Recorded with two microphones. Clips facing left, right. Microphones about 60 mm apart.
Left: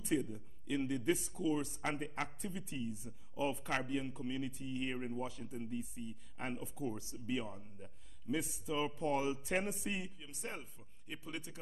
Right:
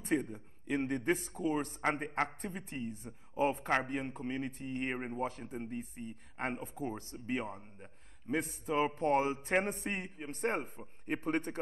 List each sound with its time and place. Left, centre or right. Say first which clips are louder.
0.0 s a man's voice: right 3 dB; right